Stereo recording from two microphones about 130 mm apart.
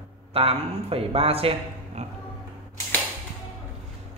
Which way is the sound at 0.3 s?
50° right (ahead or behind).